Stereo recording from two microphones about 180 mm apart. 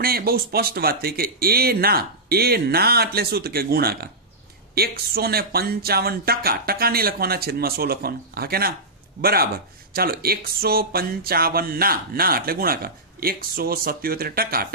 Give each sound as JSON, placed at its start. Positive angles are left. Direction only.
{"t": 0.0, "sound": "speech", "side_deg": -55}